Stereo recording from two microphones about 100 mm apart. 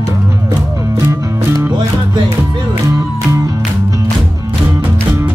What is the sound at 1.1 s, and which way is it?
Music, 30° right (ahead or behind).